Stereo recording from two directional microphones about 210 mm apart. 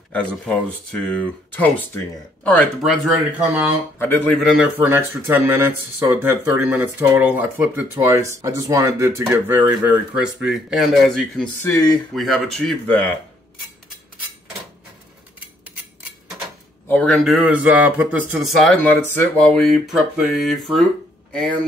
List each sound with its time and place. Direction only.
0.1 s speech: 5° left (ahead or behind)
4.0 s speech: 10° left (ahead or behind)
11.7 s speech: 20° left (ahead or behind)
12.2 s speech: centre (ahead or behind)
16.8 s speech: 5° left (ahead or behind)